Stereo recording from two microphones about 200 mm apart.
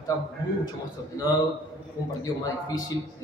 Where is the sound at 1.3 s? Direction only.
20° left (ahead or behind).